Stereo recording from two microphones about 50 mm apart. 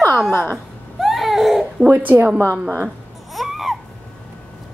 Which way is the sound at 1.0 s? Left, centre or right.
Centre.